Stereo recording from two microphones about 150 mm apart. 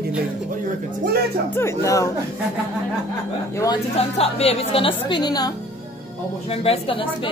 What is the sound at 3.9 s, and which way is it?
A woman's voice, 45° left (ahead or behind).